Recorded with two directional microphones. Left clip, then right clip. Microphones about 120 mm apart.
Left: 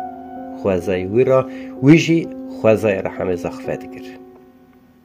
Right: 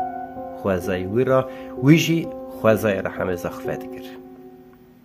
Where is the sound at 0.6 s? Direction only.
30° left (ahead or behind).